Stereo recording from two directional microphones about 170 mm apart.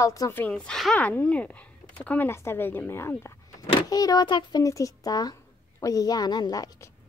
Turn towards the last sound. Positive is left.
turn(degrees=20)  # may be behind; listen again after turning